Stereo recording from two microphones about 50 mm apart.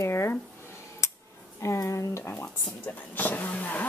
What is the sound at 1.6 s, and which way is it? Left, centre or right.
Speech, left.